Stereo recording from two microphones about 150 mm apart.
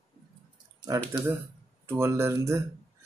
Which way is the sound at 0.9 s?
25° right (ahead or behind).